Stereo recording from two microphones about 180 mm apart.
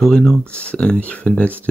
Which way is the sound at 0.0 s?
5° left (ahead or behind).